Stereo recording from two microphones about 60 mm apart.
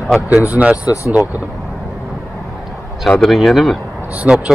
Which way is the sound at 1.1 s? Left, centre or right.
Right.